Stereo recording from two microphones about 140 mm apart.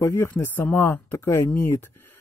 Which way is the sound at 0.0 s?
20° left (ahead or behind).